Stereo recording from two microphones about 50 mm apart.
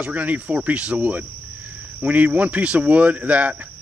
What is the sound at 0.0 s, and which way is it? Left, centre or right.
Speech, right.